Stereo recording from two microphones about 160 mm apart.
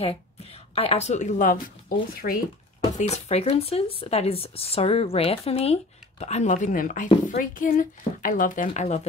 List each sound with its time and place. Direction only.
0.0 s speech: 40° left (ahead or behind); by 2.3 s 60° left (ahead or behind)
3.0 s a woman's voice: 45° left (ahead or behind)